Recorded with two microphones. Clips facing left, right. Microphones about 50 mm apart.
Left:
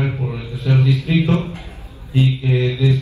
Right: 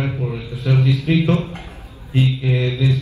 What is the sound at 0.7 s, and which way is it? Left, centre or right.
Speech, right.